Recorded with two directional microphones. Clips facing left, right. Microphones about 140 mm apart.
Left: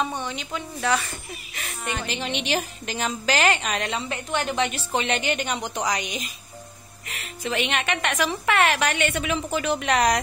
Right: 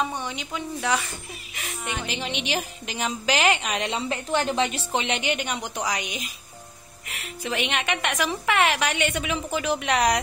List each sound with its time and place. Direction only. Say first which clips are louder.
0.0 s a woman's voice: left 1 dB; 15° right (ahead or behind)
3.9 s a woman's voice: right 2 dB; 30° right (ahead or behind); by 10.2 s 10° right (ahead or behind)